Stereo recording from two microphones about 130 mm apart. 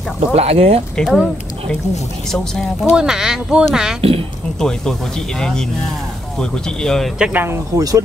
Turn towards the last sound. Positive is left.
turn(degrees=-25)  # may be behind; listen again after turning